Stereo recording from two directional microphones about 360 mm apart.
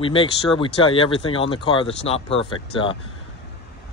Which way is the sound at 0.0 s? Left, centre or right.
Centre.